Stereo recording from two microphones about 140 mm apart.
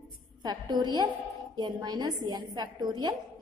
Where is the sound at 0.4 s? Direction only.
30° right (ahead or behind).